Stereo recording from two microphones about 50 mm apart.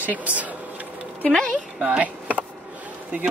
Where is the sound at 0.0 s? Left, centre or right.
Right.